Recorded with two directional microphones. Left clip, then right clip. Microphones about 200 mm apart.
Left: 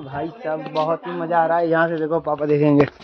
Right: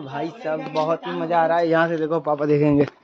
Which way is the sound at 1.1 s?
5° left (ahead or behind).